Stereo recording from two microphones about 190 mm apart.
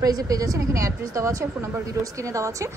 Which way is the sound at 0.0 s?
20° right (ahead or behind).